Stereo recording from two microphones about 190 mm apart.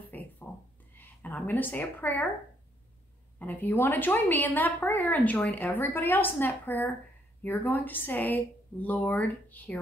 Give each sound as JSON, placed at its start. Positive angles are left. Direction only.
{"t": 0.1, "sound": "a sound", "side_deg": 10}
{"t": 0.9, "sound": "a woman's voice", "side_deg": 10}
{"t": 3.3, "sound": "a woman's voice", "side_deg": 10}